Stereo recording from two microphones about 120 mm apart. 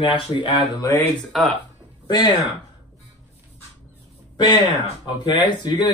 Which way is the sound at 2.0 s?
35° left (ahead or behind).